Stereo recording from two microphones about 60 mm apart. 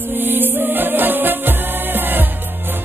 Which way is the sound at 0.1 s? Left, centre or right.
Right.